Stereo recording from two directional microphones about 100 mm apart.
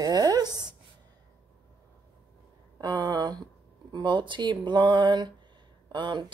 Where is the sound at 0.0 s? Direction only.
40° right (ahead or behind).